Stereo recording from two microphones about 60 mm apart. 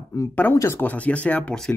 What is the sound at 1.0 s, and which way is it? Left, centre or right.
Speech, left.